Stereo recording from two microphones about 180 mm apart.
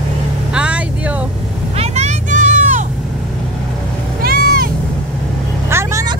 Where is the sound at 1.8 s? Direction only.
40° right (ahead or behind).